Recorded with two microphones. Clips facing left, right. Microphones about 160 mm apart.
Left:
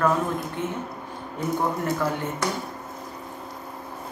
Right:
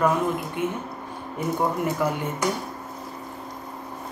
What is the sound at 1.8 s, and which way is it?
Speech, 10° right (ahead or behind).